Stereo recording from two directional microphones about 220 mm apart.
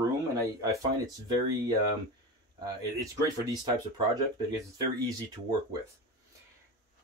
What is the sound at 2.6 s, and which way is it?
Speech, 15° right (ahead or behind).